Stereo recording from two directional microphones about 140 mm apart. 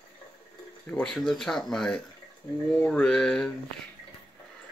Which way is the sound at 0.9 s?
5° left (ahead or behind).